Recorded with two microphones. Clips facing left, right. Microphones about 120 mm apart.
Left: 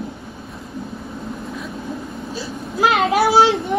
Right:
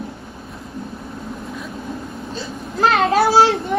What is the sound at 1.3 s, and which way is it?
Whimper, centre (ahead or behind).